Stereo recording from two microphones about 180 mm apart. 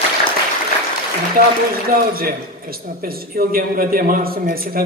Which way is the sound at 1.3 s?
55° right (ahead or behind).